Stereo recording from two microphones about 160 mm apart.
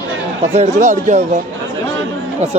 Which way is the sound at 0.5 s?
45° right (ahead or behind).